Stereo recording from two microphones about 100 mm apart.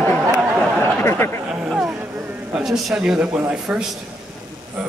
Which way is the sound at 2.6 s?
Centre (ahead or behind).